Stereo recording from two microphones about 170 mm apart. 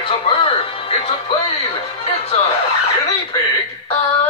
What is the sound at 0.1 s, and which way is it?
Music, 35° left (ahead or behind).